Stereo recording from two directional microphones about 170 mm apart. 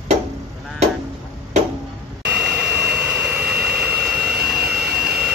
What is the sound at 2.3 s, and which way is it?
Jet engine, 5° right (ahead or behind).